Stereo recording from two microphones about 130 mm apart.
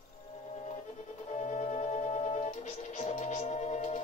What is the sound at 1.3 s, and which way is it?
Music, 60° left (ahead or behind).